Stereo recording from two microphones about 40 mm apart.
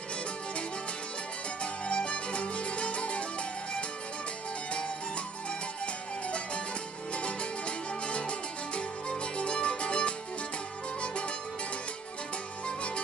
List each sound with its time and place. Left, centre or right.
1.6 s music: left
4.7 s music: left
6.2 s music: left
12.6 s music: left